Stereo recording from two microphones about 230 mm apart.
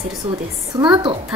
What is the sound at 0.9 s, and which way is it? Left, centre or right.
Speech, right.